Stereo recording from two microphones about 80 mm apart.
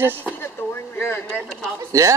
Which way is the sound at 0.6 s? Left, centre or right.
Left.